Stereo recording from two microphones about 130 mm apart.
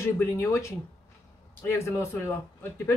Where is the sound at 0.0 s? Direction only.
20° left (ahead or behind).